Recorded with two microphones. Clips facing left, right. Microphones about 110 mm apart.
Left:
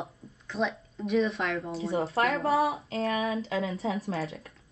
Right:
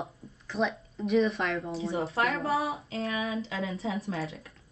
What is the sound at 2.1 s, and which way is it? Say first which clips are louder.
Speech: left 3 dB; 30° left (ahead or behind).